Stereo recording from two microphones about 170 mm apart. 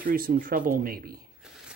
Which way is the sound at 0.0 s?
60° right (ahead or behind).